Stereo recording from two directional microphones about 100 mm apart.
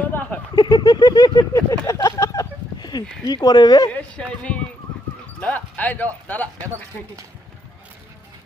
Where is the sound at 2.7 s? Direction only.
45° left (ahead or behind).